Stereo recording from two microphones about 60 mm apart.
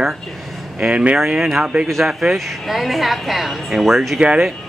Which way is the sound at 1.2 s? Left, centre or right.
Centre.